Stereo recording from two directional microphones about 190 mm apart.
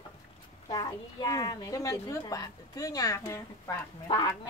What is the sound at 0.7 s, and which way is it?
Speech, 20° left (ahead or behind).